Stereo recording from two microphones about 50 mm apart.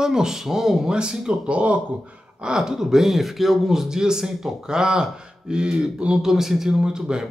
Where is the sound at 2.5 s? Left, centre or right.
Centre.